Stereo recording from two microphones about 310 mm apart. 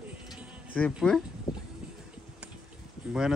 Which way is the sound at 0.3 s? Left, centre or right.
Centre.